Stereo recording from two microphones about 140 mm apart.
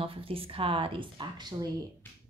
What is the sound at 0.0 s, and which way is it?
A woman's voice, 40° right (ahead or behind).